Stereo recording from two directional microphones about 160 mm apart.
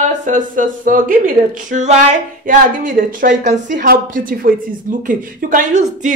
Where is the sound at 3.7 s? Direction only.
65° right (ahead or behind).